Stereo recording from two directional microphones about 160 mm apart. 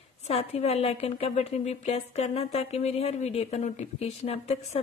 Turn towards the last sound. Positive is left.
turn(degrees=40)  # may be behind; listen again after turning